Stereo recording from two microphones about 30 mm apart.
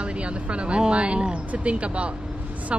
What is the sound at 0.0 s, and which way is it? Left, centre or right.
A woman's voice, right.